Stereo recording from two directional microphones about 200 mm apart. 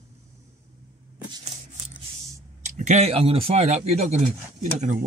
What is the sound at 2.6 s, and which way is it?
Speech, 35° right (ahead or behind).